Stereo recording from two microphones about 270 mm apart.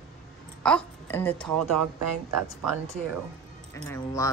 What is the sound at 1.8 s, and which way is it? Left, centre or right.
Speech, right.